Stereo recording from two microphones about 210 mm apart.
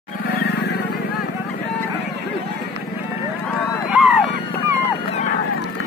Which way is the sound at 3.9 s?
Centre (ahead or behind).